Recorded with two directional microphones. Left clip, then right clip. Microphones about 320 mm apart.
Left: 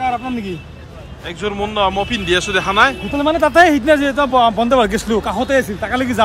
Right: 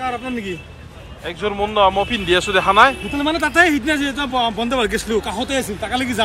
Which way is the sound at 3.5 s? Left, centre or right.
Left.